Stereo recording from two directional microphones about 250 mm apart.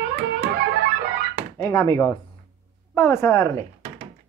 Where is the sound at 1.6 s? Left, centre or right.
Centre.